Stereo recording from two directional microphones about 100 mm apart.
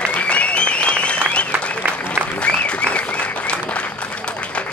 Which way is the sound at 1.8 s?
20° right (ahead or behind).